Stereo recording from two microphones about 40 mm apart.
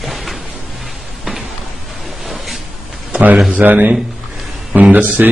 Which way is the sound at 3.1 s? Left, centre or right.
Right.